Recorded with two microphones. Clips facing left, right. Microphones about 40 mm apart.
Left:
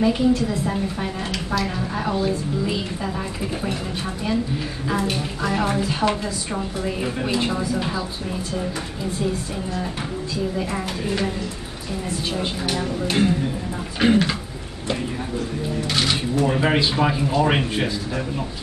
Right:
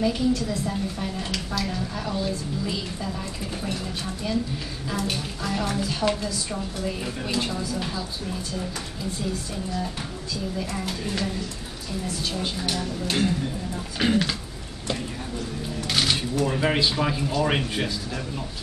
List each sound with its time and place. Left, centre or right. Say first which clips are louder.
0.0 s a woman's voice: left 5 dB; left
5.0 s a woman's voice: left 5 dB; centre
12.4 s a woman's voice: left 3 dB; left
15.9 s speech: left 1 dB; centre